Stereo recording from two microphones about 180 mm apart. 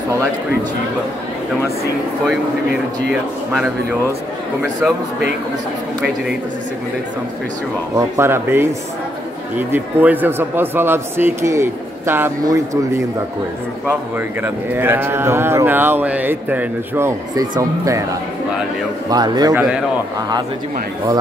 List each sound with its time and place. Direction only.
3.1 s speech: 5° right (ahead or behind)
7.9 s speech: 15° right (ahead or behind)
14.1 s speech: 10° right (ahead or behind)
19.0 s a man's voice: 25° right (ahead or behind)
19.5 s speech: 5° right (ahead or behind)
20.2 s a man's voice: 20° right (ahead or behind)